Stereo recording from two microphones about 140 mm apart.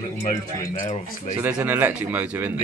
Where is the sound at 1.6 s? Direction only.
15° right (ahead or behind).